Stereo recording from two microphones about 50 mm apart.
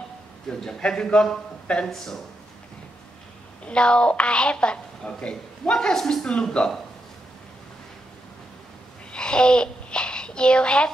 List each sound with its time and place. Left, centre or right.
0.5 s speech: centre
1.9 s speech: centre
3.6 s a woman's voice: centre
9.1 s babbling: centre